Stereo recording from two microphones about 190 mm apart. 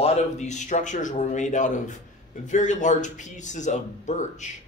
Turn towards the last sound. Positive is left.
turn(degrees=40)  # may be behind; listen again after turning